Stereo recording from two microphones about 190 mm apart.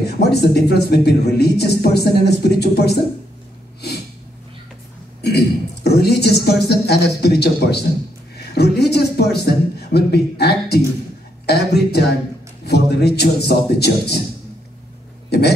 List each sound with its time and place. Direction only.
0.0 s a man's voice: 60° left (ahead or behind)
5.9 s a man's voice: 60° left (ahead or behind)
15.2 s speech: 60° left (ahead or behind)